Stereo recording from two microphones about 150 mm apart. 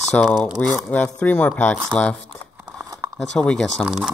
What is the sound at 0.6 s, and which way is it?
Speech, 10° left (ahead or behind).